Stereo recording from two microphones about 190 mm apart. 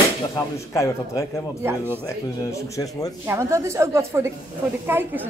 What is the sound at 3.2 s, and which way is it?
A woman's voice, 15° right (ahead or behind).